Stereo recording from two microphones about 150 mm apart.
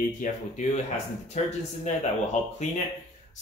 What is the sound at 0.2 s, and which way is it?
Speech, 65° left (ahead or behind).